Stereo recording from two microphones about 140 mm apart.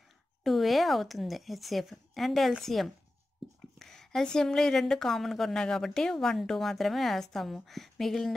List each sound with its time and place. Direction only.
0.4 s a woman's voice: centre (ahead or behind)